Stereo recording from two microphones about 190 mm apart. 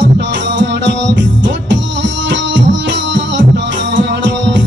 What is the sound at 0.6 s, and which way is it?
Music, 70° right (ahead or behind).